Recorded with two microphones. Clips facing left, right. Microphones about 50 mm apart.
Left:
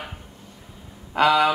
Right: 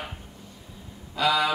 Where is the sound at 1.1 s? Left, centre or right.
Left.